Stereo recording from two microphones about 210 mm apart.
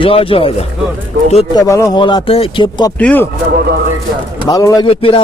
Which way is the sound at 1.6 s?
15° left (ahead or behind).